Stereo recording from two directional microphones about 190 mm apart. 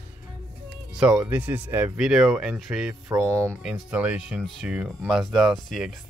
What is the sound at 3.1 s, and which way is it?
Speech, 15° right (ahead or behind).